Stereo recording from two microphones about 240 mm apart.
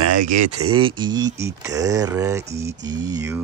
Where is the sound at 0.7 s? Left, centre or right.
Centre.